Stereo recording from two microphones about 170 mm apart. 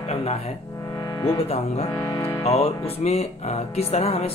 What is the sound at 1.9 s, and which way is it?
Music, 20° left (ahead or behind).